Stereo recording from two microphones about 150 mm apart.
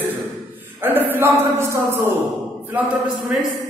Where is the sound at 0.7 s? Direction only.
15° right (ahead or behind).